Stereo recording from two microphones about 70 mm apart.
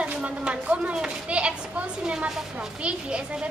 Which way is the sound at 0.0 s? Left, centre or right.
Centre.